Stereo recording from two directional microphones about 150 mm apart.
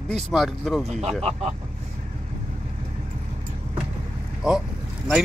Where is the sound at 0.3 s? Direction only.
Centre (ahead or behind).